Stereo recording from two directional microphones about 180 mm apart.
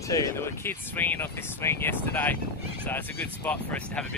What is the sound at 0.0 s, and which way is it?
Speech, 15° left (ahead or behind).